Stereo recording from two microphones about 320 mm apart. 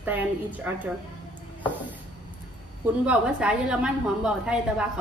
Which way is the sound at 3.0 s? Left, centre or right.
Centre.